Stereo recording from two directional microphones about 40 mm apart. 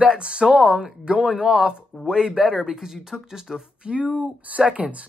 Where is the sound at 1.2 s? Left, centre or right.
Centre.